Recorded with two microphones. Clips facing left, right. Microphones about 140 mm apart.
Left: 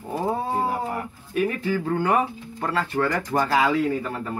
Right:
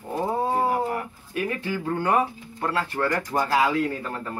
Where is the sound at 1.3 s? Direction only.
Centre (ahead or behind).